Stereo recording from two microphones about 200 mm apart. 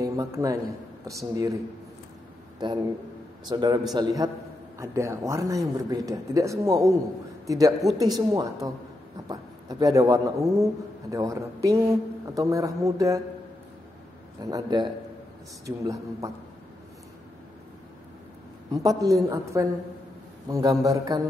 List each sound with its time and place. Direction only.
0.0 s a man's voice: 15° right (ahead or behind)
2.6 s a man's voice: 20° right (ahead or behind)
14.4 s a man's voice: 20° right (ahead or behind)
18.7 s speech: 20° right (ahead or behind)